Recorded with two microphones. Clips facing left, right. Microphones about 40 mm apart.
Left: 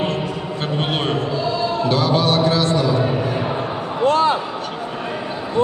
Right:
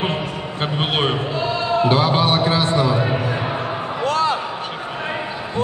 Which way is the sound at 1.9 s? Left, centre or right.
Right.